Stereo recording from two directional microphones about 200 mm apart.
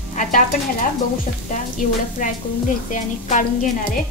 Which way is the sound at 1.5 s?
40° left (ahead or behind).